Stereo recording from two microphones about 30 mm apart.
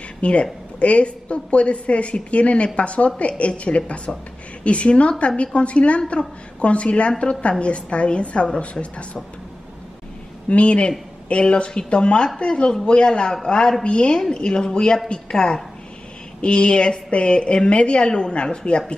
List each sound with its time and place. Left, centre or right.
0.2 s a woman's voice: left
10.5 s a woman's voice: left
16.3 s a woman's voice: left
18.0 s a woman's voice: left